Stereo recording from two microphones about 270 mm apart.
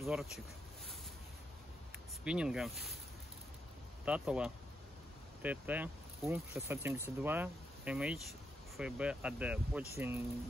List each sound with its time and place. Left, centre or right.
0.0 s speech: centre
2.2 s speech: centre
4.0 s speech: centre